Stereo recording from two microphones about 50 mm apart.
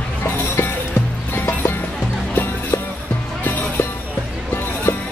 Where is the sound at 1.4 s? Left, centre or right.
Left.